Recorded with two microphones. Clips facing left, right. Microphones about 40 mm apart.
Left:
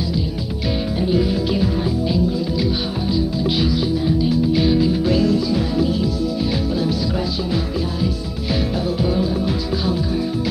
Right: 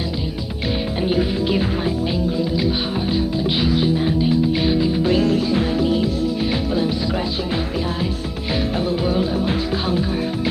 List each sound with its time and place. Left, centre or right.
0.9 s speech: right
1.3 s music: right